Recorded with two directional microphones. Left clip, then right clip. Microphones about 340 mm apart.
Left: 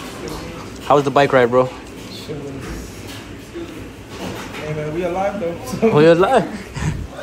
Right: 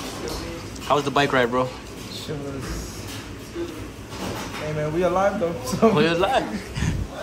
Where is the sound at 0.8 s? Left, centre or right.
Centre.